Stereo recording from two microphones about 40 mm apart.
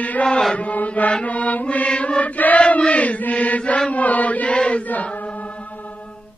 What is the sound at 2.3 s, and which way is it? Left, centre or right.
Chant, left.